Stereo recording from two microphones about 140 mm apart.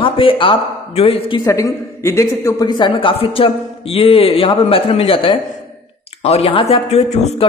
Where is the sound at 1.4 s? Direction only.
25° left (ahead or behind); by 7.4 s 50° left (ahead or behind).